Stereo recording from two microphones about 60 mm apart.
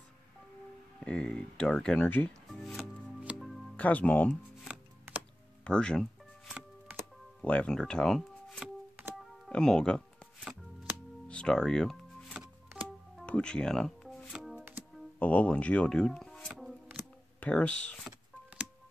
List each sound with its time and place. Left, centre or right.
1.0 s speech: centre
2.0 s speech: left
2.8 s music: centre
3.3 s music: centre
3.7 s speech: left
5.6 s music: centre
7.4 s speech: centre
8.2 s shuffling cards: centre
9.5 s speech: centre
11.2 s music: centre
13.2 s speech: centre
14.3 s music: centre
15.1 s speech: left; by 16.7 s centre
17.4 s speech: centre